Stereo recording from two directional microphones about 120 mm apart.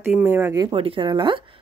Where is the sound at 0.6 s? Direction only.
45° right (ahead or behind).